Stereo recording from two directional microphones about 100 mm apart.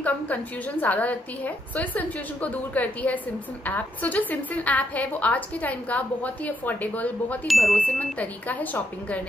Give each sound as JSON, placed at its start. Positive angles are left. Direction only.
{"t": 0.0, "sound": "a woman's voice", "side_deg": 15}
{"t": 7.4, "sound": "speech", "side_deg": 0}
{"t": 7.7, "sound": "a woman's voice", "side_deg": 15}